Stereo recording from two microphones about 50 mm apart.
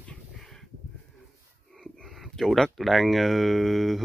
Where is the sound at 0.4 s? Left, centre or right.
Centre.